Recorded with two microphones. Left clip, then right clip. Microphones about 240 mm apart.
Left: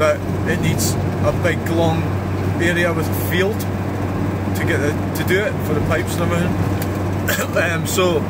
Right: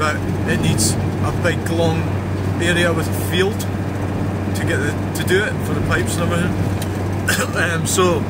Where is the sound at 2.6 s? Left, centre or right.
Centre.